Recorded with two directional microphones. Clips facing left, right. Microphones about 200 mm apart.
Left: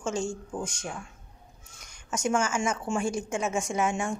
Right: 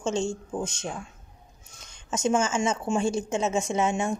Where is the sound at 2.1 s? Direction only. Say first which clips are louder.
Right 3 dB; 20° right (ahead or behind).